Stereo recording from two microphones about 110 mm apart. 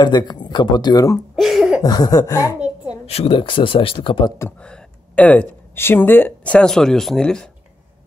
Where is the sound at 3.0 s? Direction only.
65° left (ahead or behind); by 4.3 s 50° left (ahead or behind).